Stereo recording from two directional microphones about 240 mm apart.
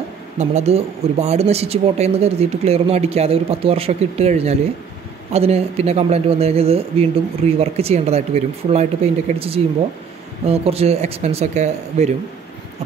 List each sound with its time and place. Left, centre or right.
0.4 s speech: right